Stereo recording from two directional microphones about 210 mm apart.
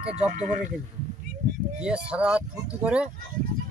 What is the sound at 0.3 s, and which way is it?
Speech, 35° right (ahead or behind).